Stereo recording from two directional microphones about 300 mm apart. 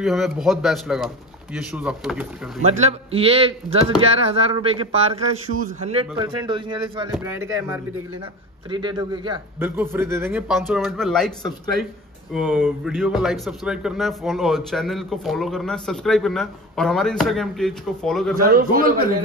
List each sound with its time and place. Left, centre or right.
0.0 s speech: centre
2.6 s a man's voice: right; by 18.3 s centre
18.4 s a man's voice: right